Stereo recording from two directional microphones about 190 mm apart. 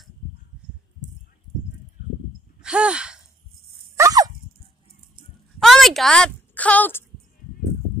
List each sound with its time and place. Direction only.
2.6 s gasp: 5° right (ahead or behind)
3.9 s dog: 15° right (ahead or behind)
5.6 s speech: centre (ahead or behind)